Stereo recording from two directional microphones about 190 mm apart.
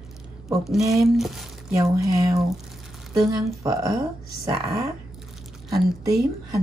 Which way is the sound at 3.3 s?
20° right (ahead or behind).